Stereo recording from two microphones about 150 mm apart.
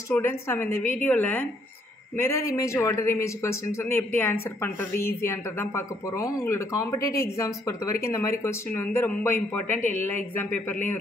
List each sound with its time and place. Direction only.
0.1 s a man's voice: 15° left (ahead or behind)